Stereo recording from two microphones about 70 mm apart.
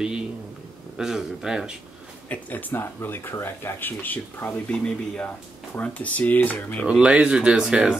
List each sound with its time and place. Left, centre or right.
0.9 s speech: centre
2.2 s speech: left
6.9 s speech: centre